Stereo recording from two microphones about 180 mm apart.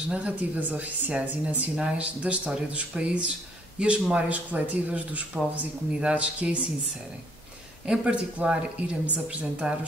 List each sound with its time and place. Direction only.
0.1 s speech: 10° right (ahead or behind)
7.8 s speech: 5° right (ahead or behind)